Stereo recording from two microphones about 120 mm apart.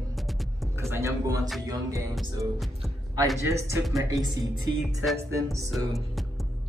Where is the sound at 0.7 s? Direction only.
20° right (ahead or behind).